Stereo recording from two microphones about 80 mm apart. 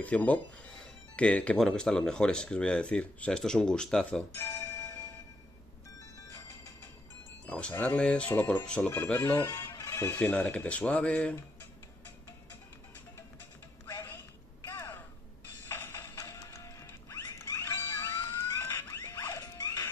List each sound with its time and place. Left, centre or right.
0.0 s speech: centre
4.4 s bell: left
7.4 s speech: centre
9.5 s music: left
10.3 s speech: centre
14.7 s a sound: left
15.7 s music: left
18.2 s a sound: left
19.4 s music: left